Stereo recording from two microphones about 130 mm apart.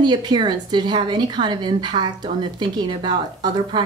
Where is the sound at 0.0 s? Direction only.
35° right (ahead or behind).